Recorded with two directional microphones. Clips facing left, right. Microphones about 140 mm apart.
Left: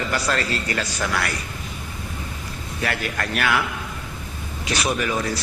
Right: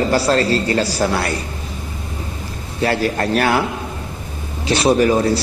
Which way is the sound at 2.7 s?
30° right (ahead or behind).